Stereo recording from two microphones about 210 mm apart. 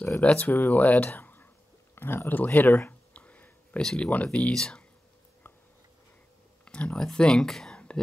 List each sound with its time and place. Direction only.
0.0 s speech: 5° left (ahead or behind)
6.6 s speech: 5° left (ahead or behind)